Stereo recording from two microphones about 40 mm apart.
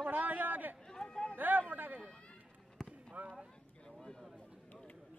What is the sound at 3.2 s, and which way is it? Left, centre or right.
Clip-clop, right.